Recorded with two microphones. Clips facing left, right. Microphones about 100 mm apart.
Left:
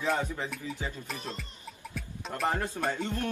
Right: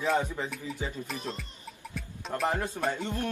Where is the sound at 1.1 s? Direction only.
Centre (ahead or behind).